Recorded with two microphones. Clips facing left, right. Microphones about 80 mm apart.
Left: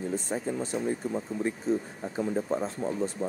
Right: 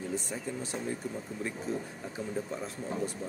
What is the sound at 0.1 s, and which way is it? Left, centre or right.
Speech, left.